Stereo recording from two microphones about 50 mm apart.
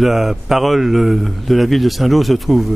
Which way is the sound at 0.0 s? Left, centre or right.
Centre.